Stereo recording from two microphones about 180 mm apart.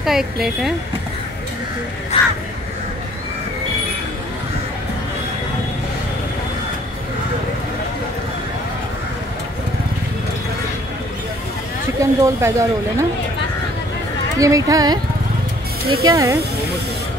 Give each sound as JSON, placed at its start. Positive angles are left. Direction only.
{"t": 0.0, "sound": "speech", "side_deg": 0}
{"t": 2.1, "sound": "a sound", "side_deg": 35}
{"t": 12.0, "sound": "speech", "side_deg": -15}
{"t": 14.4, "sound": "speech", "side_deg": -20}
{"t": 16.1, "sound": "speech", "side_deg": -20}